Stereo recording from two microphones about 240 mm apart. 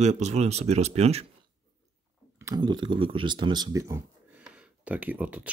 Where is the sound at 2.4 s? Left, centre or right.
Centre.